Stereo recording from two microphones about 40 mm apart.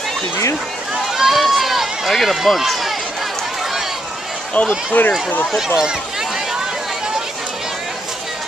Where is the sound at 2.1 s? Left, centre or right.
Centre.